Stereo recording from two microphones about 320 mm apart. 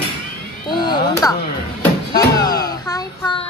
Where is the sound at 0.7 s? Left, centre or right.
Centre.